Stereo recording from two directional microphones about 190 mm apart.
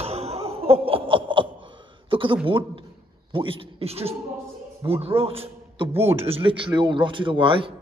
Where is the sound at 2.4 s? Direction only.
25° right (ahead or behind).